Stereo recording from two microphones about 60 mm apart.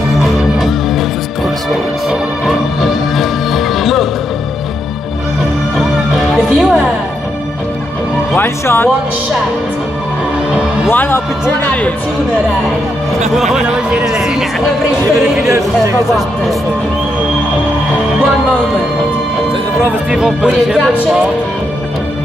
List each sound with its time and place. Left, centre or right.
0.6 s music: centre
2.0 s music: centre
5.8 s music: centre
8.4 s a man's voice: left
10.9 s a man's voice: left
13.4 s speech: centre
16.1 s speech: centre
20.1 s speech: centre